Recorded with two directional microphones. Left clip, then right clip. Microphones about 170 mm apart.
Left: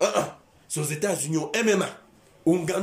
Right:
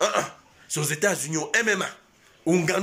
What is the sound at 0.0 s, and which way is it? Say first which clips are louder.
Speech: even; 10° left (ahead or behind).